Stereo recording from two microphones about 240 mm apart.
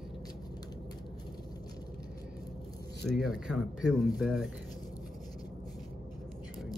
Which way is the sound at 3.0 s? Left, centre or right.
Centre.